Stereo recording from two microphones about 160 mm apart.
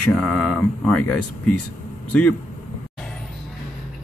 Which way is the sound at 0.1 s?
Centre (ahead or behind).